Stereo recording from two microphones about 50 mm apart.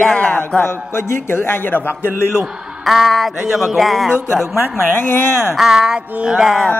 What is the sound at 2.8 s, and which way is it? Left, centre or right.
Speech, centre.